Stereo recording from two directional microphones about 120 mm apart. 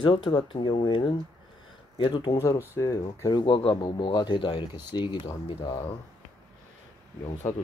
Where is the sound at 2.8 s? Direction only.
30° left (ahead or behind); by 5.9 s 45° left (ahead or behind).